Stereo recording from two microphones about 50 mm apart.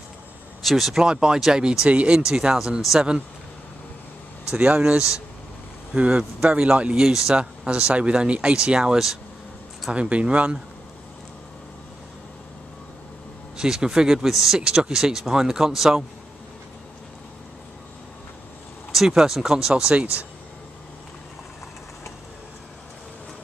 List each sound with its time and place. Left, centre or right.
0.6 s speech: centre
1.0 s speech: centre
2.1 s speech: centre
4.5 s speech: right
7.0 s speech: centre
9.9 s speech: right
13.6 s speech: centre
14.6 s speech: centre
18.9 s speech: centre
19.8 s speech: right